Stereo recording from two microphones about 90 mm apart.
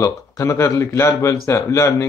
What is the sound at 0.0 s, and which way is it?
Speech, 35° left (ahead or behind).